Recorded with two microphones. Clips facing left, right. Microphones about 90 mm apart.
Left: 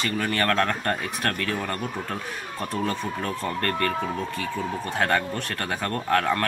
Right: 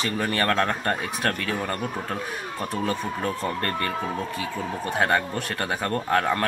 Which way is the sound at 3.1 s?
25° right (ahead or behind).